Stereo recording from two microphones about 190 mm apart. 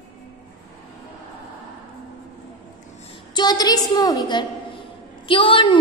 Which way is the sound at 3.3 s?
20° left (ahead or behind).